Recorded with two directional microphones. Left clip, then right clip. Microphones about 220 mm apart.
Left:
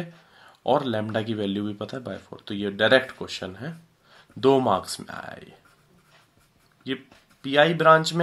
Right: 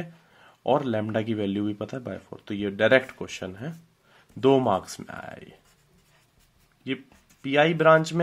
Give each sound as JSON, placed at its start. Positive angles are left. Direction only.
{"t": 0.0, "sound": "speech", "side_deg": -25}
{"t": 7.4, "sound": "speech", "side_deg": -20}